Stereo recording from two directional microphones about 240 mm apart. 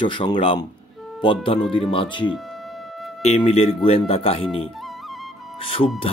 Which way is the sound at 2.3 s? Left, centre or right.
Centre.